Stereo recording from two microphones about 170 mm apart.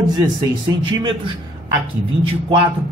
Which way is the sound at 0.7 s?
30° right (ahead or behind).